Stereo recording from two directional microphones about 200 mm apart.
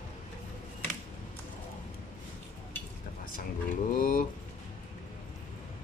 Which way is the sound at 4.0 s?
45° left (ahead or behind).